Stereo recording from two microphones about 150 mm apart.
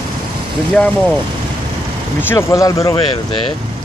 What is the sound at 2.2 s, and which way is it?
Speech, 15° left (ahead or behind).